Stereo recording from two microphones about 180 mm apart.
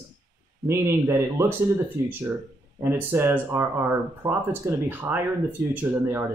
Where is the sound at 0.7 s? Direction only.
15° right (ahead or behind).